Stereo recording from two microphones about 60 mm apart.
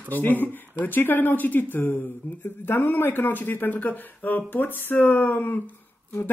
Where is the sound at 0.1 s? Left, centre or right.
Left.